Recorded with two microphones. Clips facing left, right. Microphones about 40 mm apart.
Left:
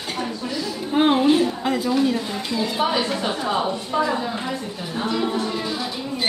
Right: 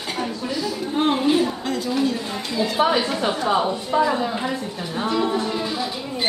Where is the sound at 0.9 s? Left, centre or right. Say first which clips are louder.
Left 4 dB; centre.